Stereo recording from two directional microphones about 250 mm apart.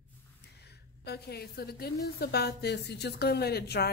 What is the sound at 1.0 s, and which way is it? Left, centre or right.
Speech, left.